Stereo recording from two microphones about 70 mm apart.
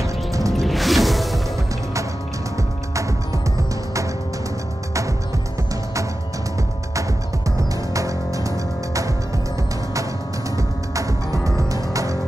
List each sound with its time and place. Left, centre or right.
0.0 s music: right
0.5 s music: centre
2.5 s music: right
7.0 s music: right
10.5 s music: right